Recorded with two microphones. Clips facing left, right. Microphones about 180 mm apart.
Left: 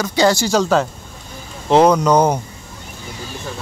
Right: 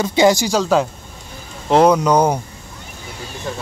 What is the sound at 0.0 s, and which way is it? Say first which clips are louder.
Speech: right 2 dB; 20° right (ahead or behind).